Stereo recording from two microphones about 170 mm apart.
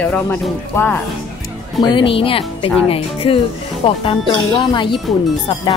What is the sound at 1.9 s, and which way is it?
Speech, 30° left (ahead or behind).